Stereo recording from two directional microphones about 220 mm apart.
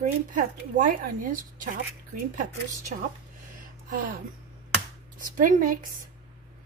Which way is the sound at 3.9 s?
40° right (ahead or behind).